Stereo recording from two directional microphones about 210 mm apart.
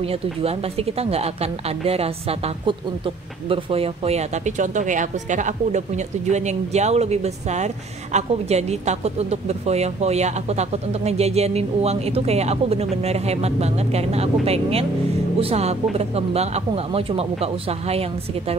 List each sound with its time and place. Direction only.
0.0 s a woman's voice: 30° right (ahead or behind)